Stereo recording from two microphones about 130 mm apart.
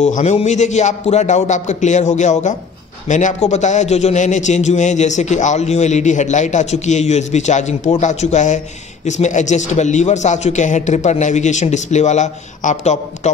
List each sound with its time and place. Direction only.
0.0 s a man's voice: 65° left (ahead or behind)